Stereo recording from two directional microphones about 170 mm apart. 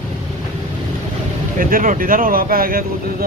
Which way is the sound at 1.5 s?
50° right (ahead or behind).